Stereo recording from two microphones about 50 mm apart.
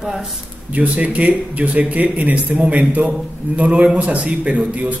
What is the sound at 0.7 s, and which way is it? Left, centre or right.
A man's voice, right.